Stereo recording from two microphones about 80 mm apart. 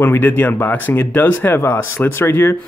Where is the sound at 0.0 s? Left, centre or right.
Left.